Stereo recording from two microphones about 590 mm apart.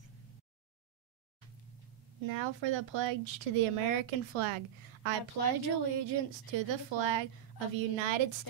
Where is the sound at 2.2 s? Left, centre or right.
Right.